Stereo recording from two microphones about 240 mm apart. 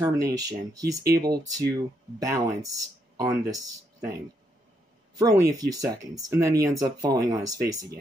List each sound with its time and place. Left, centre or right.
0.0 s speech: centre
5.1 s speech: centre